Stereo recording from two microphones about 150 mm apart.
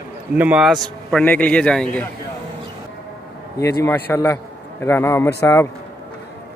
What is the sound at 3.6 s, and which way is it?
Speech, 20° left (ahead or behind).